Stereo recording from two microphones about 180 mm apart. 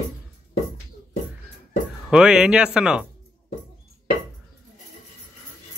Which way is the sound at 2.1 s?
5° right (ahead or behind).